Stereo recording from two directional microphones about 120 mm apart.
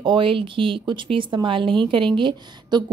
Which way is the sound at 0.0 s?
45° right (ahead or behind).